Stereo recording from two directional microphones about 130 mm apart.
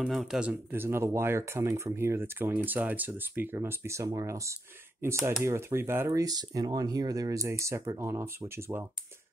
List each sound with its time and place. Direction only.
0.0 s speech: centre (ahead or behind)
0.7 s speech: 20° right (ahead or behind)